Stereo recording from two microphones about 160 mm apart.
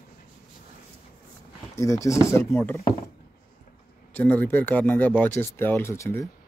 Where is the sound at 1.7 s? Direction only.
20° left (ahead or behind).